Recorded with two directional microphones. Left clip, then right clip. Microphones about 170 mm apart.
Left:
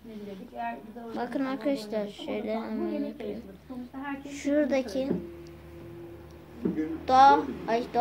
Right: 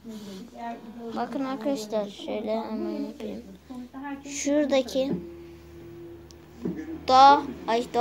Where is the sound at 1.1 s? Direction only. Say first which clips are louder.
Right 1 dB; 10° right (ahead or behind).